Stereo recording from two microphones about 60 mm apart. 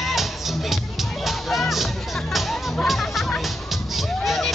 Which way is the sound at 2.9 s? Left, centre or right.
Centre.